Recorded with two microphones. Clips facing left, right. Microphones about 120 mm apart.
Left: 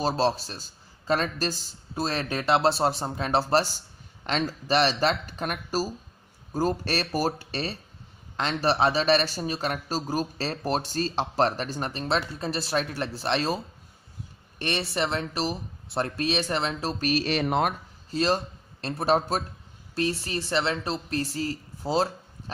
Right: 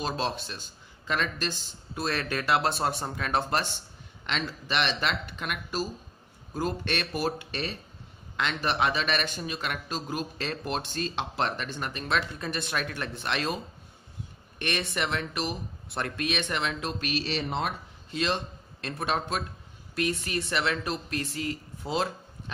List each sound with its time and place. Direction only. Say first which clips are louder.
0.0 s a man's voice: left 6 dB; 35° left (ahead or behind)
14.6 s a man's voice: left 3 dB; 30° left (ahead or behind); by 17.7 s 55° left (ahead or behind)
18.1 s a man's voice: left 4 dB; 35° left (ahead or behind)